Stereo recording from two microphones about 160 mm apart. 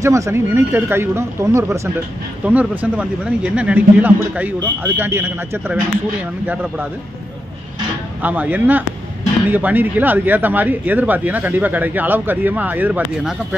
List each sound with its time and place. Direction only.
0.0 s speech: 20° right (ahead or behind)
8.2 s speech: 10° right (ahead or behind)